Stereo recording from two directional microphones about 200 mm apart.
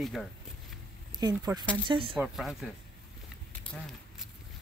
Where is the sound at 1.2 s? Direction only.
20° right (ahead or behind).